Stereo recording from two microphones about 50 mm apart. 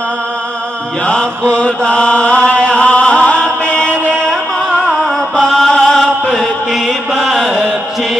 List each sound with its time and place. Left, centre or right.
1.6 s chant: left
5.7 s chant: centre
6.4 s mantra: centre